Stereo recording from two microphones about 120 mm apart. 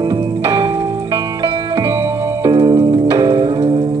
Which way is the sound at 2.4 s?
40° right (ahead or behind).